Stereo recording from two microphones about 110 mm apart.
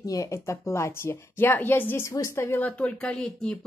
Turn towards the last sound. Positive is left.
turn(degrees=5)  # may be behind; listen again after turning